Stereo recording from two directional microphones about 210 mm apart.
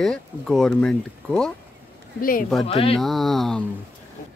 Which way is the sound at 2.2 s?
40° left (ahead or behind).